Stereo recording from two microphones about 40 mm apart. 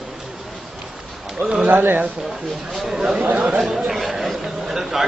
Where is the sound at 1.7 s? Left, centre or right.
Right.